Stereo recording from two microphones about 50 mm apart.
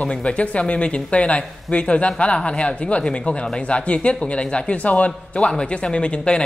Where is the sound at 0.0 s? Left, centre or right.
Left.